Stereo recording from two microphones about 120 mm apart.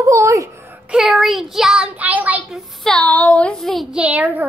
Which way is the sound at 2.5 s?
5° left (ahead or behind).